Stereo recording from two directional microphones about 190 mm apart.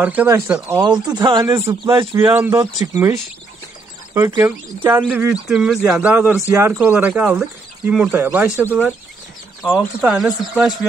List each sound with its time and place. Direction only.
0.0 s speech: 10° right (ahead or behind)
1.0 s speech: 20° right (ahead or behind)
9.6 s speech: centre (ahead or behind)